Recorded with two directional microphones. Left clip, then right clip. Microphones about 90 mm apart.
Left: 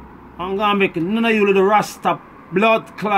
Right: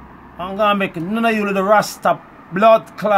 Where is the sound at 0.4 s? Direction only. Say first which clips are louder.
Right 1 dB; 20° right (ahead or behind).